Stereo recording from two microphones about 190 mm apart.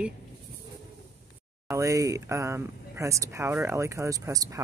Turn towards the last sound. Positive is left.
turn(degrees=-15)  # may be behind; listen again after turning